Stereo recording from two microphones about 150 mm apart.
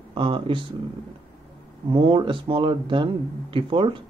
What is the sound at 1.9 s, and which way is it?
Speech, 35° right (ahead or behind).